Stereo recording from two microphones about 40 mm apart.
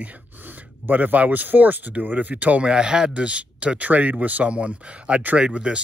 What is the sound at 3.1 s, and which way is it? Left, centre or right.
Speech, right.